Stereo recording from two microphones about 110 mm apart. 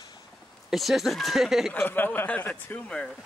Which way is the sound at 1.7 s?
20° left (ahead or behind).